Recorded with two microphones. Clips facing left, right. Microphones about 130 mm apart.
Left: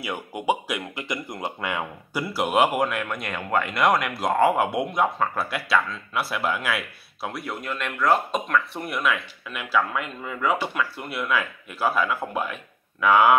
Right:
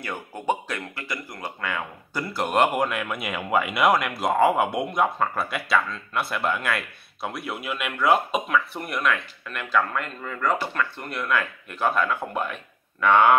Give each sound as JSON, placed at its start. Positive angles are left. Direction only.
{"t": 0.0, "sound": "speech", "side_deg": 15}
{"t": 2.3, "sound": "speech", "side_deg": 5}